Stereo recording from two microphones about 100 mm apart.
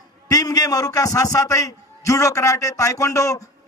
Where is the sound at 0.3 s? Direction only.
35° left (ahead or behind).